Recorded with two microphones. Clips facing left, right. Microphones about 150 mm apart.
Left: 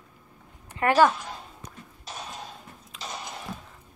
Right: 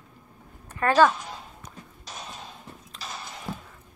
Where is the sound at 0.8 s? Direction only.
20° left (ahead or behind).